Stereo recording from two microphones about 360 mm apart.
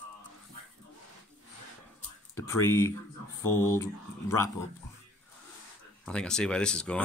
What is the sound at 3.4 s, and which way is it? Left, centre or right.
Speech, left.